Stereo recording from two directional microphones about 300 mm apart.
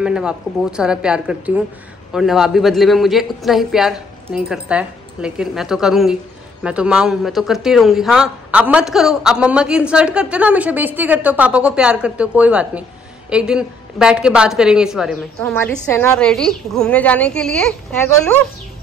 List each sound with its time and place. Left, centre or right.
0.0 s speech: centre